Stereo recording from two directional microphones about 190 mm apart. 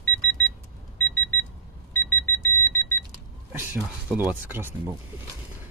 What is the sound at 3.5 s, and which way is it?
Speech, 10° right (ahead or behind).